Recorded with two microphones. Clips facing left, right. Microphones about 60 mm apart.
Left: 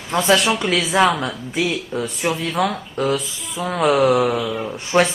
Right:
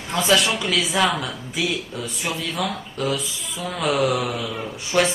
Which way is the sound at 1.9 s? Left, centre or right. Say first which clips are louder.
Left 7 dB; left.